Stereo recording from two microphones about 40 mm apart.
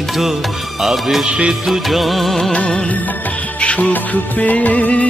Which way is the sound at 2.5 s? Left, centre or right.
Left.